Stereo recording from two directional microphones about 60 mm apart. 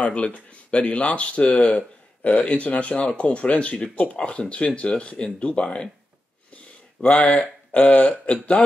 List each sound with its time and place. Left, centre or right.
0.0 s speech: left
7.0 s speech: left